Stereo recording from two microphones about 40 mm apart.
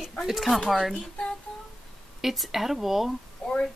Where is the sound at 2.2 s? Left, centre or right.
Centre.